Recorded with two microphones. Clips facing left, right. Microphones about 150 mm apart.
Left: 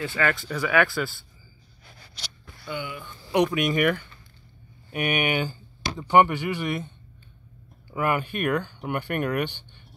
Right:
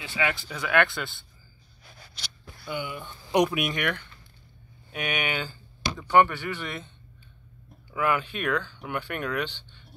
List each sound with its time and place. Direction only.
0.0 s speech: centre (ahead or behind)
2.6 s speech: 15° right (ahead or behind)
3.4 s speech: 5° right (ahead or behind)
3.7 s speech: 5° left (ahead or behind)
7.9 s speech: 50° left (ahead or behind)
8.2 s speech: 10° left (ahead or behind)
9.1 s speech: 55° left (ahead or behind)
9.4 s a sound: 15° left (ahead or behind)